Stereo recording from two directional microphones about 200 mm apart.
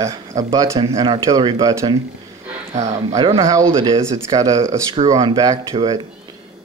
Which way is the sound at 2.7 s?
35° right (ahead or behind).